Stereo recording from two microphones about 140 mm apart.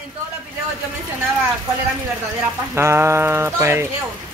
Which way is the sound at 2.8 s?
20° right (ahead or behind).